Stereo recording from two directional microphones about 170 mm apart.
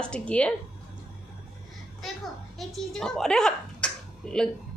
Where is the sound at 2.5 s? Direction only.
Centre (ahead or behind).